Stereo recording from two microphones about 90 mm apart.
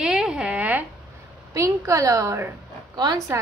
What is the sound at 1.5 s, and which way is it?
Speech, 35° right (ahead or behind).